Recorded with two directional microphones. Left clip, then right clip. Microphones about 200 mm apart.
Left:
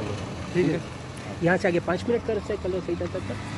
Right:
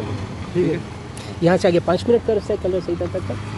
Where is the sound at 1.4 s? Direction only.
40° right (ahead or behind).